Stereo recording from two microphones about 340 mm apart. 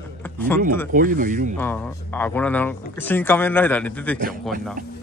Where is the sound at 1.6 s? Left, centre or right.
Centre.